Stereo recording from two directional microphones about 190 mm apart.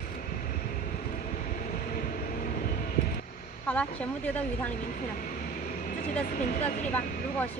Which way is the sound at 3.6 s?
5° left (ahead or behind).